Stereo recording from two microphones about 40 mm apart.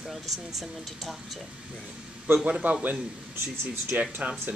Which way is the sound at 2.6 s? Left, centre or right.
Right.